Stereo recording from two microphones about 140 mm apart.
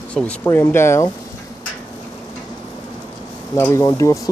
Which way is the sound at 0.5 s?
15° left (ahead or behind).